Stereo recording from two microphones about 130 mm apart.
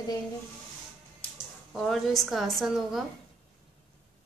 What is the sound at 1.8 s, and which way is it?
A woman's voice, centre (ahead or behind).